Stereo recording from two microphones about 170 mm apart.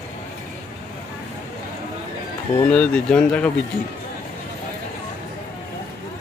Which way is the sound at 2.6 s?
5° left (ahead or behind).